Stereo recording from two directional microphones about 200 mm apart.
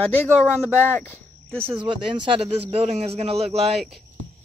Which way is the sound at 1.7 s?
25° right (ahead or behind).